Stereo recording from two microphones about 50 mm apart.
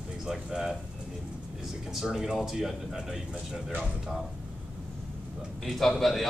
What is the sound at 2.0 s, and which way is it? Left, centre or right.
Speech, centre.